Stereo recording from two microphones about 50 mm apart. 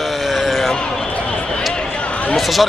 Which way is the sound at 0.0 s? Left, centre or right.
Centre.